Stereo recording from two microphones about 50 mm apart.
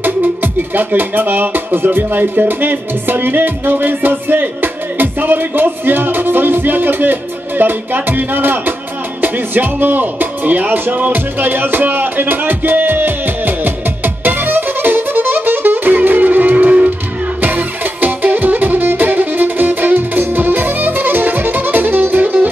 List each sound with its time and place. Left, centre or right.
0.0 s music: right